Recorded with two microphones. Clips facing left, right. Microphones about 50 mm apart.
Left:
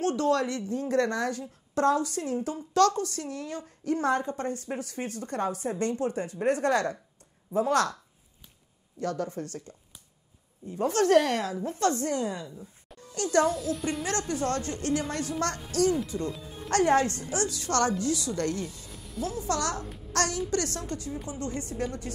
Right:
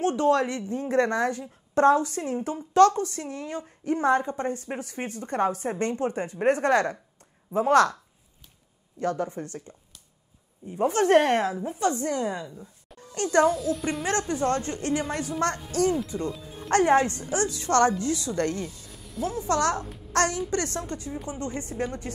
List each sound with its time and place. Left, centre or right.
0.0 s a woman's voice: right
9.0 s a woman's voice: right
11.1 s speech: right
11.5 s a woman's voice: centre
12.1 s a woman's voice: right
13.5 s speech: centre
14.0 s a woman's voice: right
16.3 s music: centre
16.7 s a woman's voice: right
18.9 s music: centre
19.2 s a woman's voice: right